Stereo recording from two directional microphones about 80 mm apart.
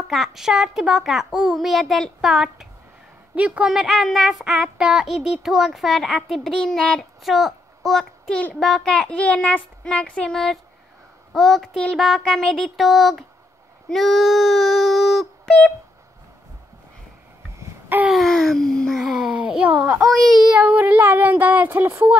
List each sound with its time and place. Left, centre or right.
0.1 s a child's voice: centre
3.7 s a child's voice: centre
7.2 s speech: centre
8.3 s speech: centre
8.5 s a child's voice: centre
8.9 s a child's voice: centre
13.8 s a sound: centre
18.0 s a child's voice: centre
20.5 s speech: centre